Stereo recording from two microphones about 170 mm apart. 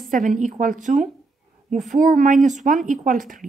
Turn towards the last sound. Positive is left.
turn(degrees=-50)  # may be behind; listen again after turning